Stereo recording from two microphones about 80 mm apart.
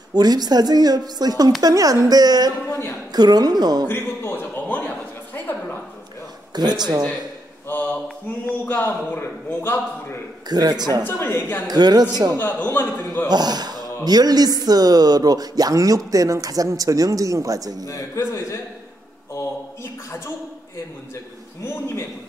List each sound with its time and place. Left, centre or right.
0.1 s speech: right
3.8 s a sound: left
6.8 s speech: right
7.6 s a sound: left
8.5 s a man's voice: centre
8.8 s a man's voice: left
10.5 s speech: right
11.1 s a man's voice: left
11.6 s speech: right
12.4 s a man's voice: left
13.3 s a man's voice: right
17.8 s a man's voice: left